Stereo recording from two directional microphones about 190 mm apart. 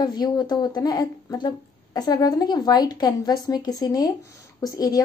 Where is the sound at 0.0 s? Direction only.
20° left (ahead or behind).